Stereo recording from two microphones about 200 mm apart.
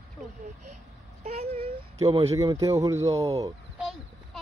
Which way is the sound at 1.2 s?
30° right (ahead or behind).